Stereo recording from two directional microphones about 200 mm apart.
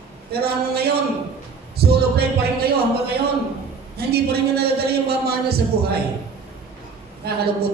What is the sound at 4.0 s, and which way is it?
Speech, 50° right (ahead or behind).